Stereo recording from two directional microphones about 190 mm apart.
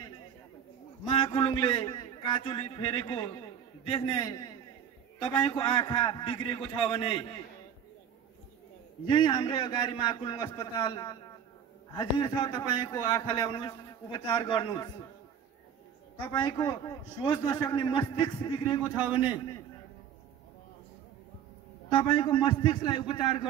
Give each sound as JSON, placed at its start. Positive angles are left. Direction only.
{"t": 1.0, "sound": "a man's voice", "side_deg": 25}
{"t": 9.0, "sound": "a man's voice", "side_deg": 25}
{"t": 16.3, "sound": "a man's voice", "side_deg": 20}
{"t": 21.9, "sound": "a man's voice", "side_deg": 25}